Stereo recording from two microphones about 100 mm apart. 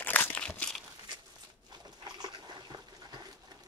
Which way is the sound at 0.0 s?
15° left (ahead or behind).